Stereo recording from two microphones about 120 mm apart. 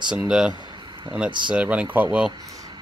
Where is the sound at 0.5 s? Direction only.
35° right (ahead or behind).